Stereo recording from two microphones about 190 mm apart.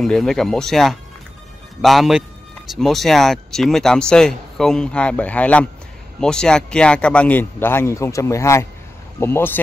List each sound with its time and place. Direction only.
0.0 s a man's voice: 5° left (ahead or behind)